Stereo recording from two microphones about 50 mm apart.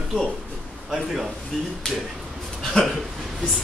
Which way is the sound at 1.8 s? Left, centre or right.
Centre.